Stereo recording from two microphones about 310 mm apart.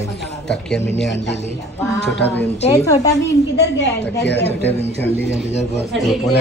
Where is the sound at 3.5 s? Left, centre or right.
Left.